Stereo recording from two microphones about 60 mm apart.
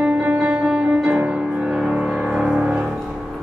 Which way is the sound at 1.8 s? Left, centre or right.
Centre.